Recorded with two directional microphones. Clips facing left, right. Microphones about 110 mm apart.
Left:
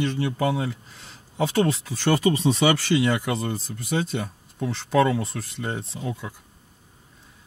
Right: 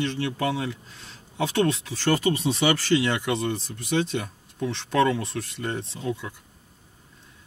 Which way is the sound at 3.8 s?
40° left (ahead or behind).